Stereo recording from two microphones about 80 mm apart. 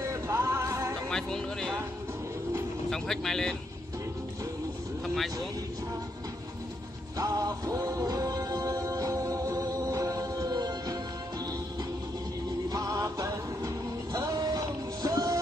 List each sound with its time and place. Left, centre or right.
0.0 s music: right
1.1 s speech: centre
2.9 s speech: centre
5.0 s vehicle: centre
7.2 s music: right
12.6 s music: right